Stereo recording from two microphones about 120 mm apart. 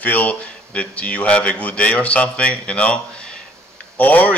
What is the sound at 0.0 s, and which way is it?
Speech, 15° left (ahead or behind).